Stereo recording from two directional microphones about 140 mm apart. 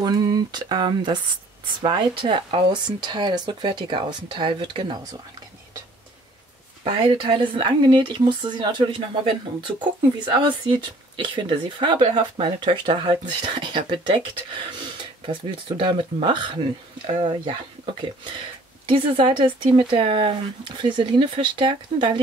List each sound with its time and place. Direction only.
0.0 s speech: 30° right (ahead or behind)
6.8 s speech: 35° right (ahead or behind)
18.9 s speech: 35° right (ahead or behind)